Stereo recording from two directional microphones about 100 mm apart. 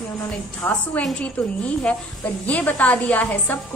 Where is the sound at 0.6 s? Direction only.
25° left (ahead or behind).